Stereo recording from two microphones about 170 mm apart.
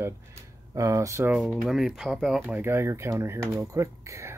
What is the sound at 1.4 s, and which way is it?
Speech, centre (ahead or behind).